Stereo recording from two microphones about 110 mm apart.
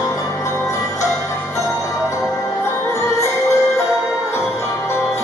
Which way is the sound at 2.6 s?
25° left (ahead or behind).